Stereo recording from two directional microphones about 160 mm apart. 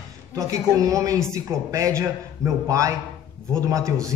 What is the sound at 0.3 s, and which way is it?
Speech, 20° right (ahead or behind).